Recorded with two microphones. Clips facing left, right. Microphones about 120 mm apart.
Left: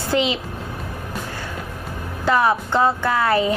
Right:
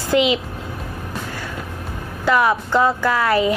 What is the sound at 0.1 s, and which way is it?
Speech, 35° left (ahead or behind).